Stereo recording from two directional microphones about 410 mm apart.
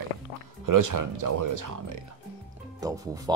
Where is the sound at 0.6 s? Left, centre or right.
Right.